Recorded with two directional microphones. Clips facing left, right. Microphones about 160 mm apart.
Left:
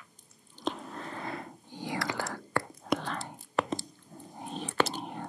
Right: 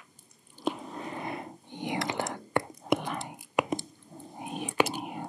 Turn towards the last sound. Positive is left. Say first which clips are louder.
# right 2 dB
turn(degrees=-10)  # may be behind; listen again after turning